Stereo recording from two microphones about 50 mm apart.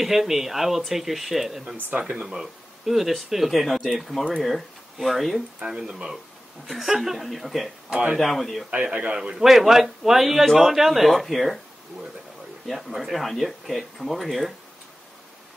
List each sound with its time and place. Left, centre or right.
0.0 s speech: centre
2.0 s speech: right
2.2 s speech: centre
5.6 s a man's voice: centre
6.7 s speech: centre
7.9 s speech: right
8.2 s speech: centre
8.8 s a man's voice: centre
9.4 s a man's voice: centre
12.6 s speech: centre